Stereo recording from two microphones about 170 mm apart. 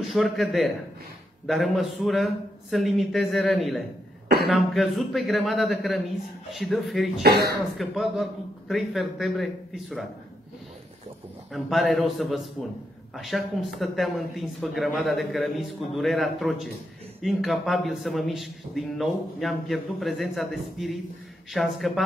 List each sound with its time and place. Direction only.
0.1 s a man's voice: centre (ahead or behind)
7.2 s speech: 70° right (ahead or behind)
7.7 s a man's voice: centre (ahead or behind)
11.5 s a man's voice: centre (ahead or behind)